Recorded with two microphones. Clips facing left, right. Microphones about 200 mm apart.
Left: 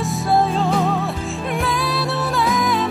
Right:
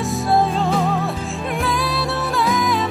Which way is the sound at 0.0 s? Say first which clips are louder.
Even; centre (ahead or behind).